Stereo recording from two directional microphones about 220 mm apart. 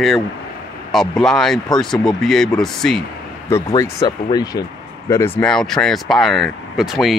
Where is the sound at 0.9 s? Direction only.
Centre (ahead or behind).